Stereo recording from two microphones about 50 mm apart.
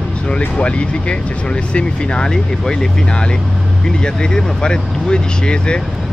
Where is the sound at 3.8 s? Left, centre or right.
Centre.